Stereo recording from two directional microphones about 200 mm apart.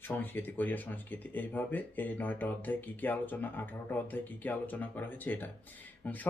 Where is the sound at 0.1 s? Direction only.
10° left (ahead or behind).